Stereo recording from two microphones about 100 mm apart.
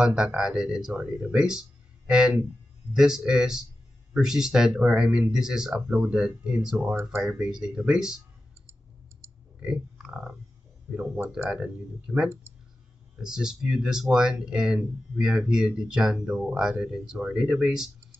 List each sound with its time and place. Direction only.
0.0 s speech: 10° right (ahead or behind)
7.0 s speech: 20° right (ahead or behind)
7.2 s speech: 5° right (ahead or behind)
9.2 s clicking: 25° right (ahead or behind)
9.6 s pig: 5° right (ahead or behind)
10.9 s speech: 10° right (ahead or behind)